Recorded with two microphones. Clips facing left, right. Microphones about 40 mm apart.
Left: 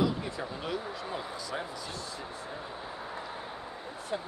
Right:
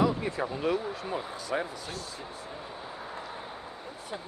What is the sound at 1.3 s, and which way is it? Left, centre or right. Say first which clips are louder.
Speech: right 4 dB; right.